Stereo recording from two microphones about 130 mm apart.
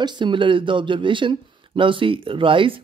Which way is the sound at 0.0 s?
35° right (ahead or behind).